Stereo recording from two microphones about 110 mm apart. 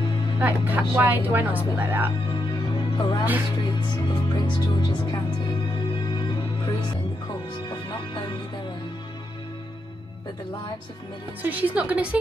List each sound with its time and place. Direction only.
0.4 s speech: 15° right (ahead or behind)
2.5 s music: 40° left (ahead or behind)
3.6 s speech: 40° left (ahead or behind)
11.4 s speech: 15° right (ahead or behind)